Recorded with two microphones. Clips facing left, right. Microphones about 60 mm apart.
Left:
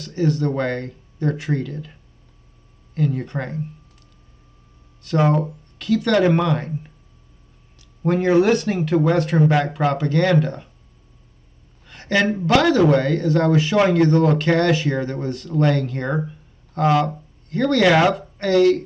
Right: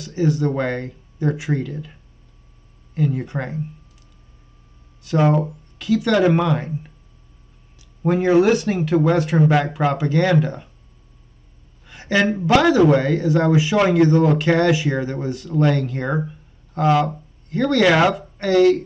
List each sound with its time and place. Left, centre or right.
0.0 s speech: centre
5.0 s speech: centre
11.8 s speech: centre